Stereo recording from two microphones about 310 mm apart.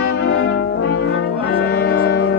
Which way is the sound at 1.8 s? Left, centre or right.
Left.